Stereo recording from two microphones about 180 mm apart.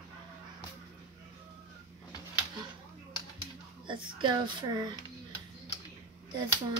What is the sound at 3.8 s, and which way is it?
A woman's voice, 25° right (ahead or behind).